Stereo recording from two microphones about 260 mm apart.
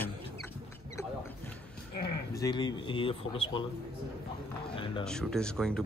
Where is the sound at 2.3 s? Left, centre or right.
Centre.